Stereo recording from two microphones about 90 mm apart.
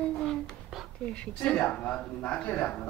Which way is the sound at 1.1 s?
10° left (ahead or behind).